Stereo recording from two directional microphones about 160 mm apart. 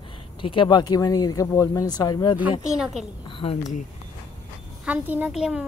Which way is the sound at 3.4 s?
45° left (ahead or behind).